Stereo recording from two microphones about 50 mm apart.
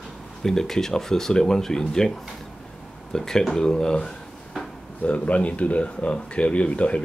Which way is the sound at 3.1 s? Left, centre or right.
Centre.